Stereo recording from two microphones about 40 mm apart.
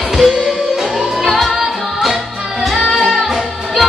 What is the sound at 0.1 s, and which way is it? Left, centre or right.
Music, centre.